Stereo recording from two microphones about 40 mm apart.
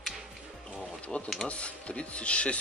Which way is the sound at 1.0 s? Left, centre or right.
Left.